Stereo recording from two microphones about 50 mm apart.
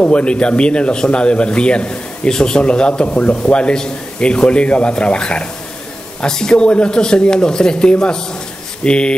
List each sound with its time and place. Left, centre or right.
0.0 s speech: left